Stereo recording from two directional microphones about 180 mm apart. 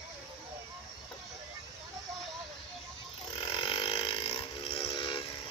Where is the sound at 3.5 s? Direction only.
30° left (ahead or behind).